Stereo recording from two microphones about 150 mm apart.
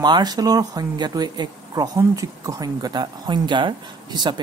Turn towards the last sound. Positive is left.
turn(degrees=-30)  # may be behind; listen again after turning